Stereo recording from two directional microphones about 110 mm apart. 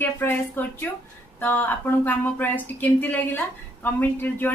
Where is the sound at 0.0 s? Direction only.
20° left (ahead or behind).